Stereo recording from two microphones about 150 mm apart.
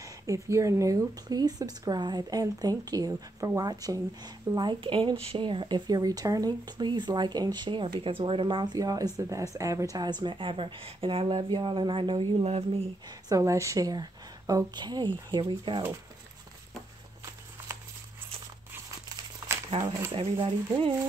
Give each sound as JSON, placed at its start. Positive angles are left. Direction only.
{"t": 0.0, "sound": "speech", "side_deg": -20}
{"t": 13.3, "sound": "a woman's voice", "side_deg": -20}
{"t": 17.6, "sound": "a sound", "side_deg": -15}
{"t": 18.7, "sound": "crumpling", "side_deg": -20}
{"t": 20.1, "sound": "speech", "side_deg": -35}